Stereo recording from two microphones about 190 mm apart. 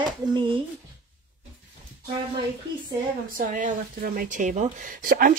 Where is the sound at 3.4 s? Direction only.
45° right (ahead or behind).